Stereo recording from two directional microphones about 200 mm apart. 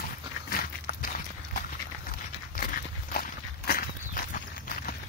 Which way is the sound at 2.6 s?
50° left (ahead or behind).